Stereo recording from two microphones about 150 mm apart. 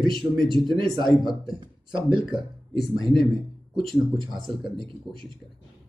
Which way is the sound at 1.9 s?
35° right (ahead or behind).